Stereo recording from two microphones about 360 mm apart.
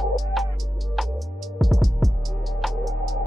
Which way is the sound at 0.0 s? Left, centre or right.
Centre.